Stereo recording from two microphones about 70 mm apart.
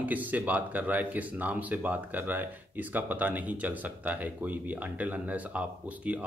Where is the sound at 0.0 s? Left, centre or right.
Right.